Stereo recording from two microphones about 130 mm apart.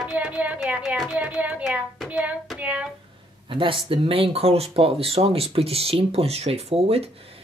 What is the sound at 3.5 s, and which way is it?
Speech, 40° right (ahead or behind).